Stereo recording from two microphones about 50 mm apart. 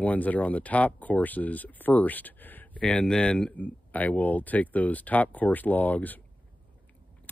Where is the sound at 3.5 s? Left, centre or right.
Left.